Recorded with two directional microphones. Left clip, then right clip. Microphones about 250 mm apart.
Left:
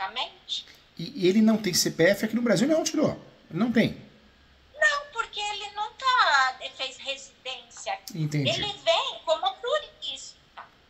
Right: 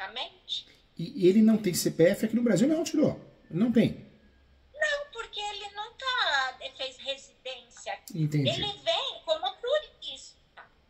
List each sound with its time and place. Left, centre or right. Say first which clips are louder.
0.0 s a woman's voice: left 5 dB; centre
0.9 s speech: even; centre
4.7 s a sound: left 6 dB; centre